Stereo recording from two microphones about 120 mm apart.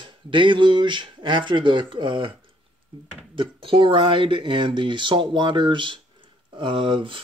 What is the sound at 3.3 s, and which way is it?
Speech, 45° right (ahead or behind).